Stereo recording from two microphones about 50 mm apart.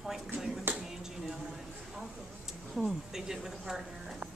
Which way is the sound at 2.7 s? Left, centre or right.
Centre.